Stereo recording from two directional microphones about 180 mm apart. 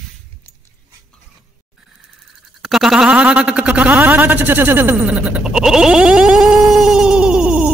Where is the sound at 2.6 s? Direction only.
Centre (ahead or behind).